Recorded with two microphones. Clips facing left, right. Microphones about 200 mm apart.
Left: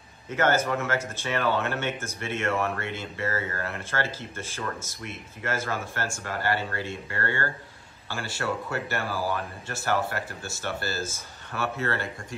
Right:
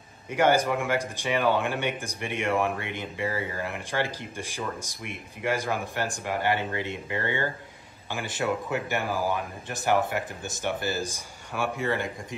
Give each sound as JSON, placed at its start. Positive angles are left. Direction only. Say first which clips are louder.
{"t": 0.3, "sound": "speech", "louder": "right 2 dB", "side_deg": -15}